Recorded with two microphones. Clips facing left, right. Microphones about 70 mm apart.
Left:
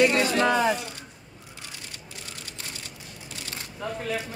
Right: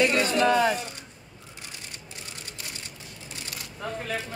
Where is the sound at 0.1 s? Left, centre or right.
Left.